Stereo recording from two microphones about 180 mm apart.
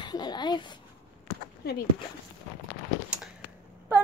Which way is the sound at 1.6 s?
60° left (ahead or behind).